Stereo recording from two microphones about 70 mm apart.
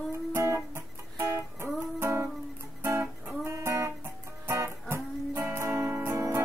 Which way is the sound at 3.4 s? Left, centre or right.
Right.